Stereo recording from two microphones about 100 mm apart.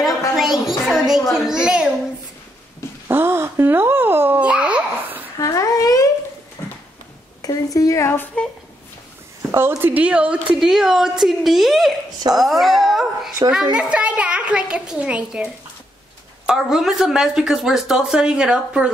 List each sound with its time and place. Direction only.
0.4 s a woman's voice: centre (ahead or behind)
3.1 s babbling: 20° right (ahead or behind)
5.4 s a sound: 35° left (ahead or behind)
6.6 s a sound: 25° left (ahead or behind)
7.4 s a woman's voice: 35° left (ahead or behind)
9.5 s a woman's voice: 25° right (ahead or behind)